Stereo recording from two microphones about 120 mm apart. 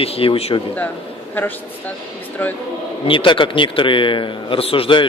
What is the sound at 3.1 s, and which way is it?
A man's voice, 45° left (ahead or behind).